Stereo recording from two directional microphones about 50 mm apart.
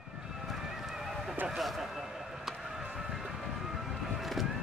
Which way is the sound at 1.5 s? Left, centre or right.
Centre.